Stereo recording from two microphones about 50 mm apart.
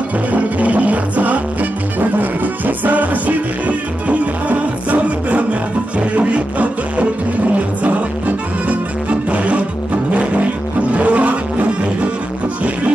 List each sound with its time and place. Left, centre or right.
0.3 s music: right
9.3 s music: right
10.1 s vehicle: right